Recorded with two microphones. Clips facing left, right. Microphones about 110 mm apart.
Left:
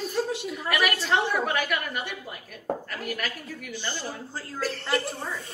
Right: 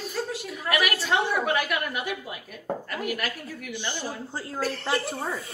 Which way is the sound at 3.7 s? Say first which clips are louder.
Right 1 dB; 15° right (ahead or behind).